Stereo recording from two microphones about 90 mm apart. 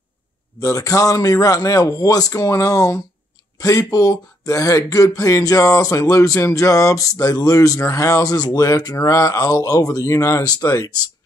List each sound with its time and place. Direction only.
0.6 s speech: 40° left (ahead or behind)